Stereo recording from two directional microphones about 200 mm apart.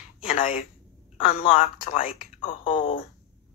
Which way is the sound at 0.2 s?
40° left (ahead or behind).